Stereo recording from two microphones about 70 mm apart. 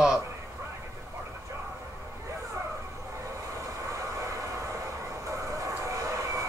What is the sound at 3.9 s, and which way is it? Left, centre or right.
Vehicle, right.